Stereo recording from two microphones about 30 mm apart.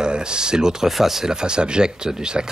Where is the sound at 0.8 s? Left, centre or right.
Centre.